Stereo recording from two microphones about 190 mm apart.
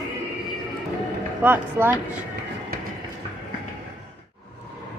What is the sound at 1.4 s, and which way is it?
Speech, 10° right (ahead or behind).